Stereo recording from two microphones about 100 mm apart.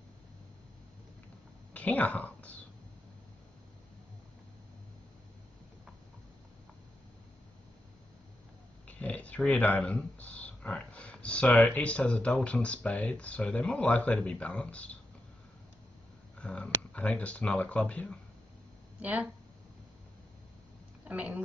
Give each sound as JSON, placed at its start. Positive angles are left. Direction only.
{"t": 1.7, "sound": "a sound", "side_deg": 15}
{"t": 8.8, "sound": "a sound", "side_deg": 15}
{"t": 12.4, "sound": "speech", "side_deg": 10}
{"t": 16.3, "sound": "speech", "side_deg": 10}
{"t": 18.9, "sound": "speech", "side_deg": -15}
{"t": 21.0, "sound": "speech", "side_deg": -15}